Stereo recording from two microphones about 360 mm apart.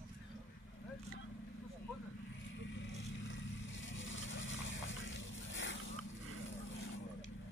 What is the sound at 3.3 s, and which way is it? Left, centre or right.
Vehicle, left.